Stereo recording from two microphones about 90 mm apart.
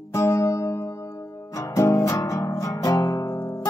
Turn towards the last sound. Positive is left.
turn(degrees=35)  # may be behind; listen again after turning